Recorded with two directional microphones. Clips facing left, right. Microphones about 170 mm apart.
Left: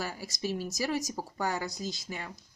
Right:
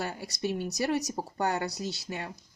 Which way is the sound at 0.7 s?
65° right (ahead or behind).